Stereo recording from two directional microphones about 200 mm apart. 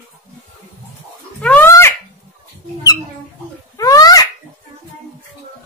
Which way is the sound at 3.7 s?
15° left (ahead or behind).